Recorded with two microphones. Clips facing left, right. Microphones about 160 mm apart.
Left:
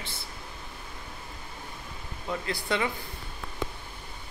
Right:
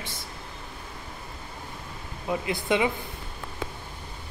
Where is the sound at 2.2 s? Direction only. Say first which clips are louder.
Right 4 dB; 20° right (ahead or behind).